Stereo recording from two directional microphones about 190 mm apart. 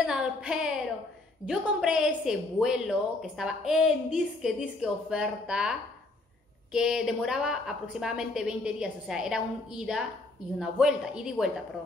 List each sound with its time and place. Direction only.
0.0 s a woman's voice: 5° right (ahead or behind)